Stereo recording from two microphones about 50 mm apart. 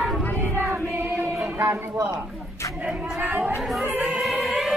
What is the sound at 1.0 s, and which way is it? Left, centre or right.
Female singing, right.